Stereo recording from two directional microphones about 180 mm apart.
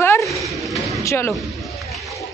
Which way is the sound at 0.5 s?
Centre (ahead or behind).